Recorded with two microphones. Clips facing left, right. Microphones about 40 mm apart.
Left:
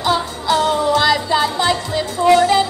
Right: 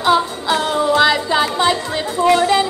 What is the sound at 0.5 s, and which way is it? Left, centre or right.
Music, right.